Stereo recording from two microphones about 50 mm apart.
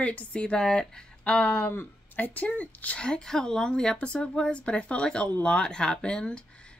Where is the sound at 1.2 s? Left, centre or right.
Left.